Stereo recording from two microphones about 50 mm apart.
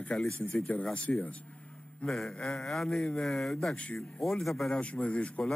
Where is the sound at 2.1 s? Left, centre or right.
Centre.